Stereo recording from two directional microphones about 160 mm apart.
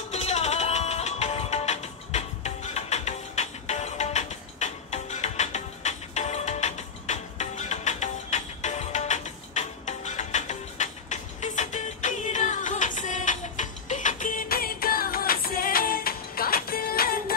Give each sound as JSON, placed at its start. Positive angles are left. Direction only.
{"t": 0.1, "sound": "music", "side_deg": 45}